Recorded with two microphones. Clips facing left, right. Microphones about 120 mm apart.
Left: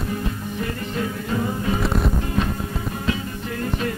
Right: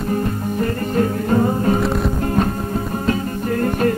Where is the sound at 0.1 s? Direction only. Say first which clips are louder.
Right 7 dB; 45° right (ahead or behind).